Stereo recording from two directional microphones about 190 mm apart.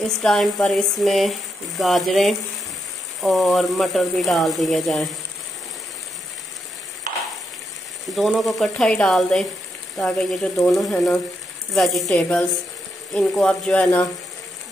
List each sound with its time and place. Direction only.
0.2 s speech: centre (ahead or behind)
8.1 s speech: centre (ahead or behind)